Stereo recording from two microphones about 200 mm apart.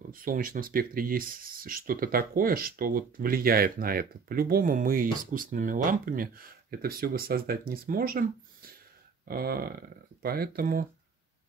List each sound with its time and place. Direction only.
0.1 s speech: 45° right (ahead or behind)